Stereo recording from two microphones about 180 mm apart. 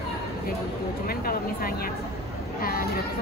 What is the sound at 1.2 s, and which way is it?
Speech, 55° left (ahead or behind).